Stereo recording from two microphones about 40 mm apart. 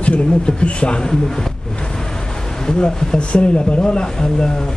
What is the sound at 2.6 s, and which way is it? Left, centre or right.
Speech, centre.